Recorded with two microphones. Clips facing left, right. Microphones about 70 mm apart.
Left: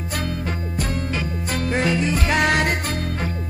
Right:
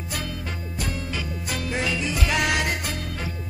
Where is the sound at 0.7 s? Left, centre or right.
Left.